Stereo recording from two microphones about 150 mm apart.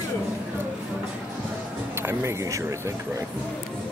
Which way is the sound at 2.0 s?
15° right (ahead or behind).